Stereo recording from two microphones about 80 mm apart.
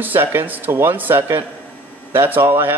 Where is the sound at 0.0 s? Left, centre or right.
Right.